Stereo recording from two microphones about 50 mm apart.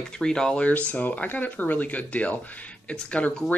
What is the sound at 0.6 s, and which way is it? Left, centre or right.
Speech, left.